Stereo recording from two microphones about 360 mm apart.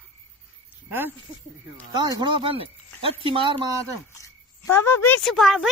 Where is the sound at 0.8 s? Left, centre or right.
Centre.